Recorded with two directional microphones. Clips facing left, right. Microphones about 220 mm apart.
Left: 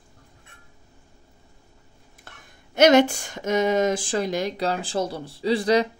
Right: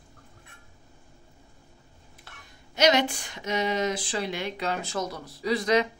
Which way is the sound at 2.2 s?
50° left (ahead or behind).